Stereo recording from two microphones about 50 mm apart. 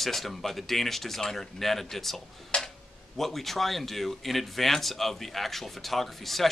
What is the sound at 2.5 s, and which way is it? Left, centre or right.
Tick-tock, centre.